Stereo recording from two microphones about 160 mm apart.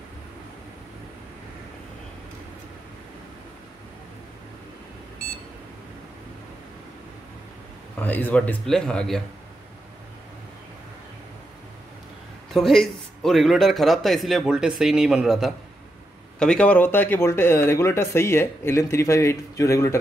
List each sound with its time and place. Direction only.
8.0 s speech: 10° left (ahead or behind)
12.5 s speech: centre (ahead or behind); by 20.0 s 20° left (ahead or behind)